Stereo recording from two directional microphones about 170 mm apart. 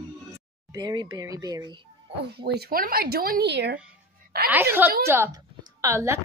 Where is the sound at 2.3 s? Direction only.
70° right (ahead or behind).